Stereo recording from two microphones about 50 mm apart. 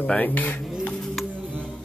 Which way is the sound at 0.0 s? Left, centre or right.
Left.